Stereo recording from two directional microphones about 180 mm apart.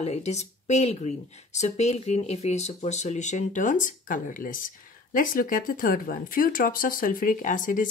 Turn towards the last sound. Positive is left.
turn(degrees=45)  # may be behind; listen again after turning